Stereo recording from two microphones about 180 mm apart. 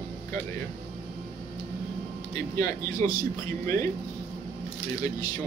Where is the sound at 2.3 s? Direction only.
20° left (ahead or behind).